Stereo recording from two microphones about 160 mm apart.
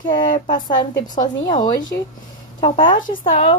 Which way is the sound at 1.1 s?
25° left (ahead or behind).